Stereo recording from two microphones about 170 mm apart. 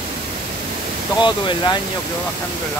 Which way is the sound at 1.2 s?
25° left (ahead or behind).